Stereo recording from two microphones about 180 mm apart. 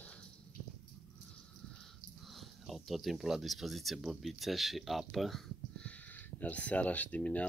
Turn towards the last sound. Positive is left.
turn(degrees=10)  # may be behind; listen again after turning